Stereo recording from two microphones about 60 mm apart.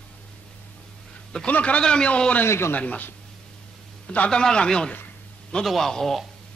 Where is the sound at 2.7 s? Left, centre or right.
Left.